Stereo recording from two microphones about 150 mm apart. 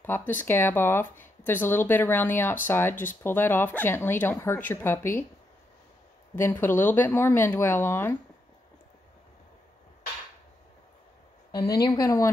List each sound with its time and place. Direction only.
0.0 s speech: 15° left (ahead or behind)
6.3 s speech: 15° left (ahead or behind)
11.5 s a woman's voice: 25° left (ahead or behind)